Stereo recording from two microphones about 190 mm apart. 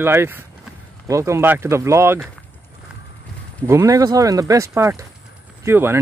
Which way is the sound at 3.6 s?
15° right (ahead or behind).